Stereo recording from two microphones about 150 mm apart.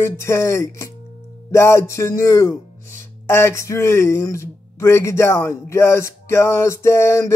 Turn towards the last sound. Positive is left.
turn(degrees=20)  # may be behind; listen again after turning